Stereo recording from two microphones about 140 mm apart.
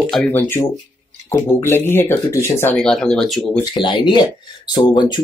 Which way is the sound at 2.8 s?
5° left (ahead or behind).